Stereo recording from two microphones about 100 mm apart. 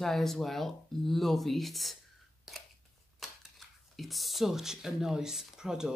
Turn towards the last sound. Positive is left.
turn(degrees=-5)  # may be behind; listen again after turning